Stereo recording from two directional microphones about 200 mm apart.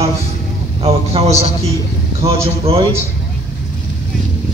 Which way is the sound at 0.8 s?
30° right (ahead or behind).